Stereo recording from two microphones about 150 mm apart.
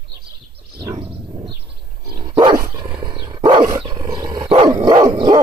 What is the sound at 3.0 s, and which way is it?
Dog, 30° right (ahead or behind).